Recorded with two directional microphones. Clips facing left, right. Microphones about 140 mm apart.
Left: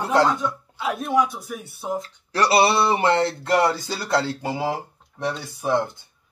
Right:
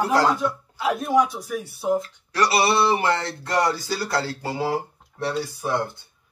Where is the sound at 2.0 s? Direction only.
30° left (ahead or behind).